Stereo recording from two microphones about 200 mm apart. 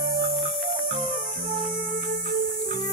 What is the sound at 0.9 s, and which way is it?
Music, 40° right (ahead or behind).